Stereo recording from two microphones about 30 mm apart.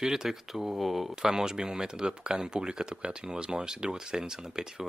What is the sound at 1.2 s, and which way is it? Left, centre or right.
Speech, right.